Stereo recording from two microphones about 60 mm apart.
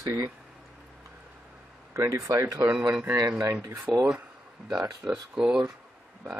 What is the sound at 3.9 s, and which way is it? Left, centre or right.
Speech, right.